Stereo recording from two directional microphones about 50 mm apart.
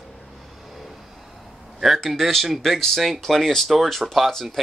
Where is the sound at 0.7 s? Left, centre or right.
Centre.